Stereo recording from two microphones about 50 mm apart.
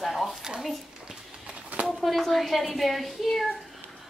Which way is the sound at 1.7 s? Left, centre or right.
Right.